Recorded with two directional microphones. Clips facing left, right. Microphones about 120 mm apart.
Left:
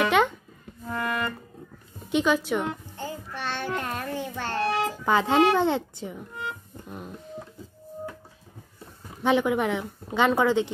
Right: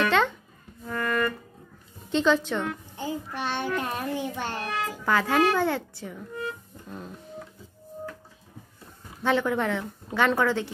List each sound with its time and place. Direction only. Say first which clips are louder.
0.0 s music: left 1 dB; 15° left (ahead or behind)
2.0 s a woman's voice: even; 10° left (ahead or behind)
3.0 s child singing: right 6 dB; 15° right (ahead or behind)
4.6 s speech: left 4 dB; 25° left (ahead or behind)
9.2 s a woman's voice: left 2 dB; 15° left (ahead or behind)